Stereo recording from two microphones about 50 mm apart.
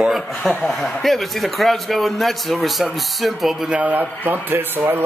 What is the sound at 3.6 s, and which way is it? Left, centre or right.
A man's voice, right.